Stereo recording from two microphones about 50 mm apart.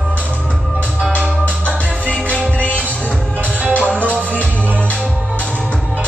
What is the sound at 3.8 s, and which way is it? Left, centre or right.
Music, right.